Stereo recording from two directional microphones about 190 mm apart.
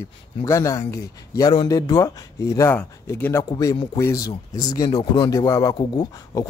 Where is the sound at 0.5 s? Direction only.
15° left (ahead or behind).